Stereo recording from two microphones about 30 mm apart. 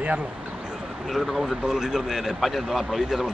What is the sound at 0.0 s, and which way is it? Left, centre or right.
Speech, right.